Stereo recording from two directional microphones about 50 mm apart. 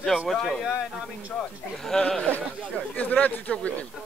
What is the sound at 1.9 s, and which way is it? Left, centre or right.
Snicker, centre.